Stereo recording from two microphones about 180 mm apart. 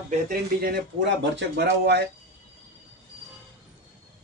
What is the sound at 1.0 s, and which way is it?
Speech, 75° right (ahead or behind).